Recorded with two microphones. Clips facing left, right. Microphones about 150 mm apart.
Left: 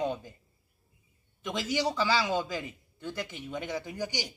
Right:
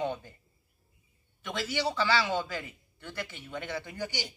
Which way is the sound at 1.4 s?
15° left (ahead or behind).